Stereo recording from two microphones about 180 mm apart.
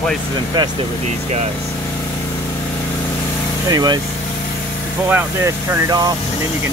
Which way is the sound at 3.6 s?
20° right (ahead or behind).